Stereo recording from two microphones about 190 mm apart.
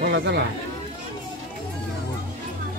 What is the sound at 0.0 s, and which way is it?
Speech, 65° right (ahead or behind).